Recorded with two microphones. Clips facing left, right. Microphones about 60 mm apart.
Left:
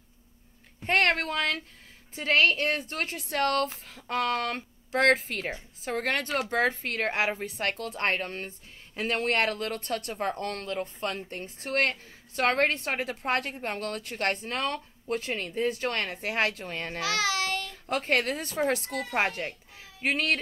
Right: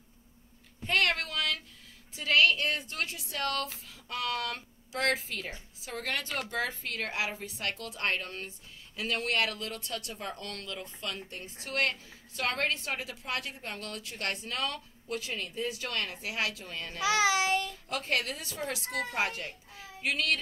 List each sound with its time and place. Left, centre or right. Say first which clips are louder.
0.8 s a sound: left 4 dB; left
2.1 s a woman's voice: left 2 dB; left
17.0 s child singing: right 3 dB; centre
17.8 s speech: left 5 dB; left